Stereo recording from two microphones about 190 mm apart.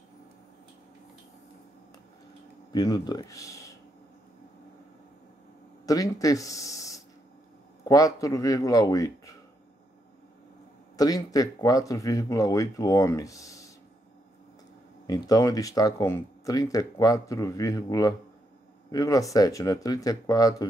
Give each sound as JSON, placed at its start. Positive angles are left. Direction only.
{"t": 2.7, "sound": "speech", "side_deg": 20}
{"t": 5.9, "sound": "speech", "side_deg": 20}
{"t": 11.0, "sound": "speech", "side_deg": 20}
{"t": 15.0, "sound": "speech", "side_deg": 20}